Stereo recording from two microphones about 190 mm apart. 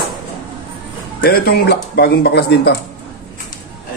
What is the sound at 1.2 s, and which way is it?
A man's voice, 50° left (ahead or behind).